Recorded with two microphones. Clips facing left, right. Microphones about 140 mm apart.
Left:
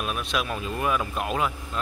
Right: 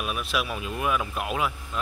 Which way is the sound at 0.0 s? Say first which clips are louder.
Left 1 dB; 5° right (ahead or behind).